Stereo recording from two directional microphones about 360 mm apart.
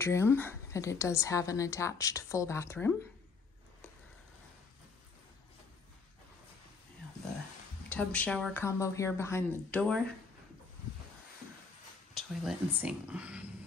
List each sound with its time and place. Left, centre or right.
0.0 s a woman's voice: centre
7.9 s speech: centre
12.1 s speech: centre